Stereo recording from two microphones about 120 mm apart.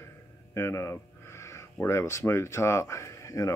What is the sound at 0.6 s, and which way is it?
Speech, 20° left (ahead or behind).